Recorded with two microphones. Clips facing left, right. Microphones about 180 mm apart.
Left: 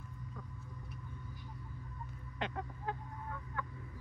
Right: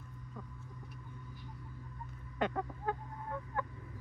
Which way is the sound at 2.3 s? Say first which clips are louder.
Right 6 dB; 45° right (ahead or behind).